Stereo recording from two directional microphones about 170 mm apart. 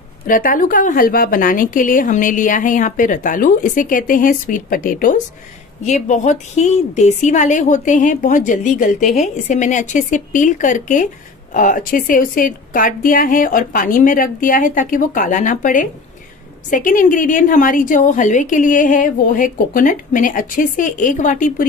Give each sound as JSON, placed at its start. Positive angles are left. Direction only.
{"t": 0.3, "sound": "a woman's voice", "side_deg": 55}